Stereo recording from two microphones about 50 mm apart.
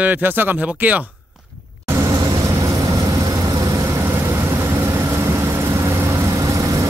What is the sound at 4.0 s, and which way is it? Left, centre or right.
Vehicle, right.